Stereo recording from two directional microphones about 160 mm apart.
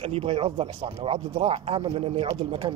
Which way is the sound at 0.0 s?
40° right (ahead or behind).